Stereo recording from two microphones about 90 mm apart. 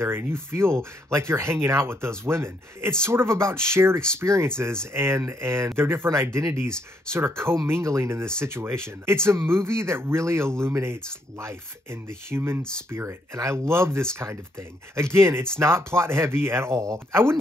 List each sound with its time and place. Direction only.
0.0 s speech: 30° right (ahead or behind)